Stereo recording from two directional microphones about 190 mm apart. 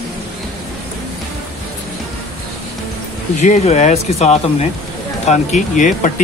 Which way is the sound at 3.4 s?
40° left (ahead or behind).